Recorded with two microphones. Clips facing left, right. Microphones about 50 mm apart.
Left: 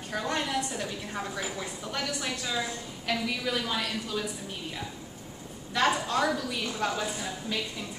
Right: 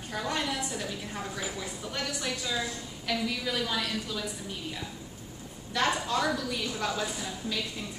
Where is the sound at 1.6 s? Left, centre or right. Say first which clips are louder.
Left 1 dB; centre.